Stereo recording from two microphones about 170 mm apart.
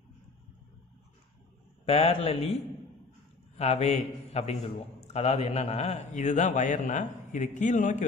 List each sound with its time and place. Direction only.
1.9 s a man's voice: 35° left (ahead or behind)
3.5 s a man's voice: 40° left (ahead or behind)